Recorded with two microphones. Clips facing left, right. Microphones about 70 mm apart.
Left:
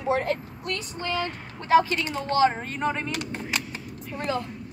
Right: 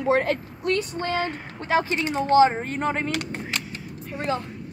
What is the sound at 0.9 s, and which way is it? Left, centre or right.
Speech, right.